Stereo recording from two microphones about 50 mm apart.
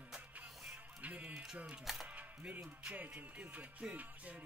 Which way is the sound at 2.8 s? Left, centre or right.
Right.